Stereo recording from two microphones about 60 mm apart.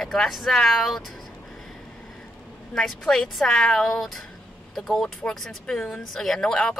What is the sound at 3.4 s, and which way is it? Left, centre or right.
Speech, centre.